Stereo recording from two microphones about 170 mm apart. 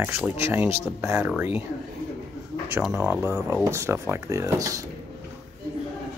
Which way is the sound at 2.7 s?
10° right (ahead or behind).